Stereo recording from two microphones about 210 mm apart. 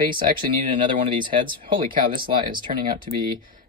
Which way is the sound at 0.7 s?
25° right (ahead or behind).